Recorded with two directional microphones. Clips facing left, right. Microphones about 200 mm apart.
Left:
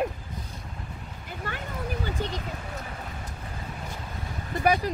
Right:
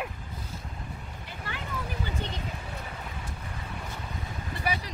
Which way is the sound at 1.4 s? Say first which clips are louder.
Left 3 dB; 45° left (ahead or behind).